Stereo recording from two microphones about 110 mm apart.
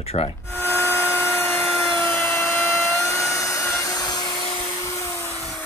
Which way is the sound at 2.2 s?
20° left (ahead or behind).